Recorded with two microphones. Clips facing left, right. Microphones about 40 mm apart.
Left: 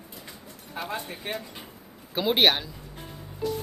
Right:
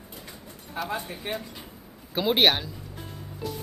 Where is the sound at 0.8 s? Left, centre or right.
Centre.